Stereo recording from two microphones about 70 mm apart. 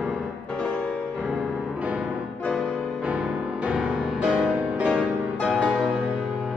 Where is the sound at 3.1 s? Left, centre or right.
Centre.